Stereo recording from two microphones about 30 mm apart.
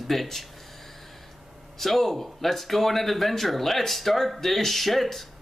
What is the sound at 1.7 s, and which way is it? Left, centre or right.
Speech, centre.